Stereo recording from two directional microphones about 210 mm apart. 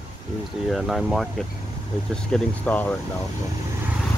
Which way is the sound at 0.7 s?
Centre (ahead or behind).